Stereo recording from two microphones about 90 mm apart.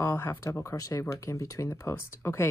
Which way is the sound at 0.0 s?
25° left (ahead or behind).